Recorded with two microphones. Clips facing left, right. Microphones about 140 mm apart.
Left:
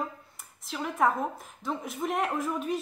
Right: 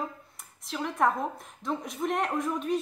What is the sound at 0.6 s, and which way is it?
A woman's voice, centre (ahead or behind).